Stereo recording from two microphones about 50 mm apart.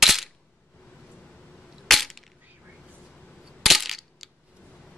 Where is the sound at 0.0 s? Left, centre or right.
Centre.